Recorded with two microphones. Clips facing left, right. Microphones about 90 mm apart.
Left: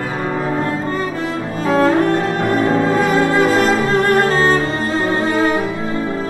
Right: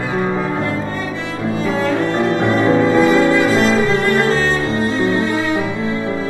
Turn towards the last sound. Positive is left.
turn(degrees=40)  # may be behind; listen again after turning